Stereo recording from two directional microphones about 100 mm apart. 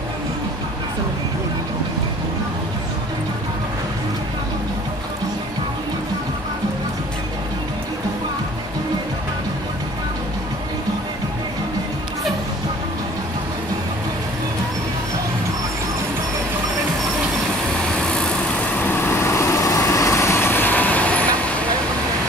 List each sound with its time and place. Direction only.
18.8 s vehicle: 20° left (ahead or behind)